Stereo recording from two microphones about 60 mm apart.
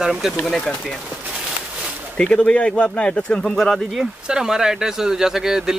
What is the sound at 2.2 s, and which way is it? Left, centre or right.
Speech, centre.